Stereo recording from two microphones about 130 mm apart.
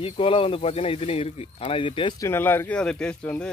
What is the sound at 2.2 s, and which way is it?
Speech, 15° left (ahead or behind).